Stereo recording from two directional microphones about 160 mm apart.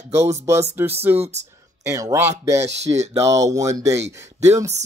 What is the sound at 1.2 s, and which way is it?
Speech, 45° right (ahead or behind).